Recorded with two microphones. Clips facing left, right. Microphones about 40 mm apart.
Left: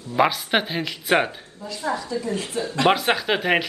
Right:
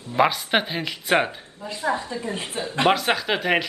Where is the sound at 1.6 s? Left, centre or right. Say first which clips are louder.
Right 1 dB; right.